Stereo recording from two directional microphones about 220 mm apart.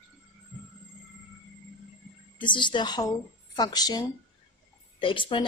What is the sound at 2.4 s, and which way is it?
A woman's voice, 20° left (ahead or behind).